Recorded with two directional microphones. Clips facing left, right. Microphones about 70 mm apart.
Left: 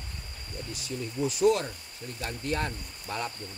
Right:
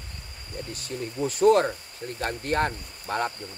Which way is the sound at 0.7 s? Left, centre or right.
Right.